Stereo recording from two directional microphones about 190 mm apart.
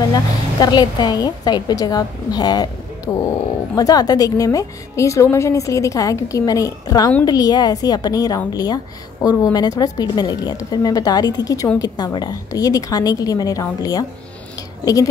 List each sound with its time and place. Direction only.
0.1 s a woman's voice: 20° left (ahead or behind)
3.1 s speech: 5° left (ahead or behind)
3.7 s a woman's voice: 20° left (ahead or behind)